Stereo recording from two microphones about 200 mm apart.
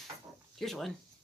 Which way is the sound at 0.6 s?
Centre (ahead or behind).